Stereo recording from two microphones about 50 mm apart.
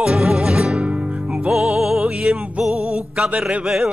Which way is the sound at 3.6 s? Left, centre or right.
Centre.